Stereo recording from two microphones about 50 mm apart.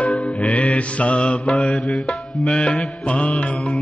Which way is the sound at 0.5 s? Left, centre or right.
Left.